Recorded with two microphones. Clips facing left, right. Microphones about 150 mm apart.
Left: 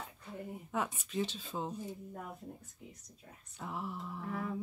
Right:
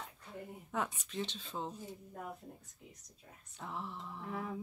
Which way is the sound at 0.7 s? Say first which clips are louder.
Left 1 dB; 5° left (ahead or behind).